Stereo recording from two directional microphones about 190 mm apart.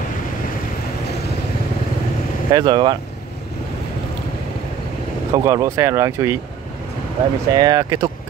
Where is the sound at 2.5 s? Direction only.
20° right (ahead or behind).